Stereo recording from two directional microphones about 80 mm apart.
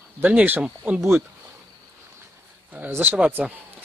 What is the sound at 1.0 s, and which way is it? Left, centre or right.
Speech, right.